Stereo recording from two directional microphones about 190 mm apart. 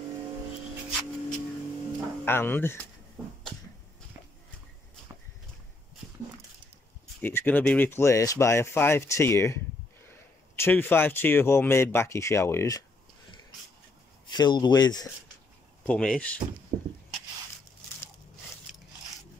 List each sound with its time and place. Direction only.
2.2 s speech: 10° left (ahead or behind)
7.2 s speech: 10° left (ahead or behind)
14.2 s speech: 25° left (ahead or behind)
15.8 s speech: 5° left (ahead or behind)
16.7 s vehicle: 35° right (ahead or behind)